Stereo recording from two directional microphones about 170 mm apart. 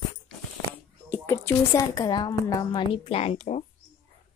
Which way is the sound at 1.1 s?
15° left (ahead or behind).